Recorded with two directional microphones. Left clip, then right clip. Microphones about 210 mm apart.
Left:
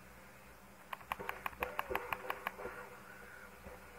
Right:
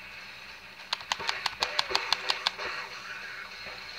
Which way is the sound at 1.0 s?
30° right (ahead or behind).